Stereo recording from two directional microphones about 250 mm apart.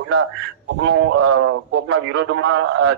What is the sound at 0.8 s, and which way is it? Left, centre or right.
A man's voice, right.